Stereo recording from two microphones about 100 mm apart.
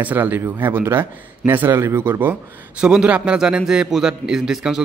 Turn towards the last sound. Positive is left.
turn(degrees=-5)  # may be behind; listen again after turning